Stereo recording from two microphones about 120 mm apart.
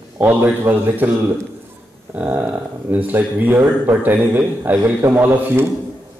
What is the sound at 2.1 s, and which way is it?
Speech, 15° right (ahead or behind).